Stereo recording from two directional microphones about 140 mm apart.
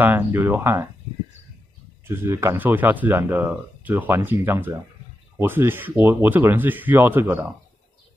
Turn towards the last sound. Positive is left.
turn(degrees=-15)  # may be behind; listen again after turning